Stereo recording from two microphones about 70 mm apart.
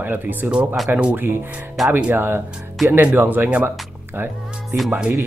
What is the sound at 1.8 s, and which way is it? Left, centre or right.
Speech, centre.